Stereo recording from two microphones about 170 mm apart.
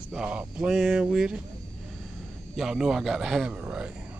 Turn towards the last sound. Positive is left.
turn(degrees=-10)  # may be behind; listen again after turning